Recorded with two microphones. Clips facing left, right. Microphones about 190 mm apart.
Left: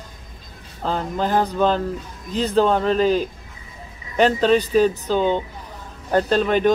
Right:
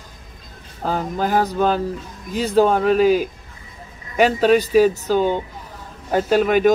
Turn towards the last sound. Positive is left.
turn(degrees=-10)  # may be behind; listen again after turning